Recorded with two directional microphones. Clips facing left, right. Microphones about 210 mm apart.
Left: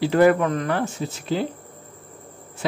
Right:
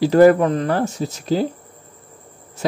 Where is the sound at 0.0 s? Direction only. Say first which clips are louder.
Right 5 dB; 40° right (ahead or behind).